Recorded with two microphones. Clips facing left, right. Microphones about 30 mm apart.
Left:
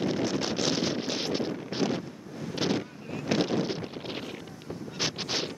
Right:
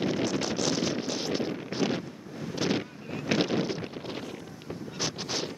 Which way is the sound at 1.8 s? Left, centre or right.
Centre.